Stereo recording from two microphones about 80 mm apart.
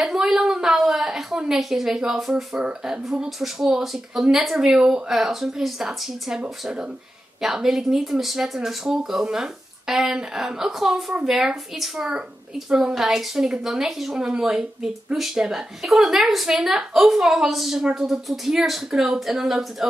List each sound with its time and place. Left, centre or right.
0.0 s speech: centre